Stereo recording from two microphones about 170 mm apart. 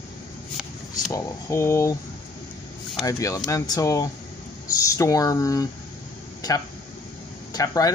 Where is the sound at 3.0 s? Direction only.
20° left (ahead or behind).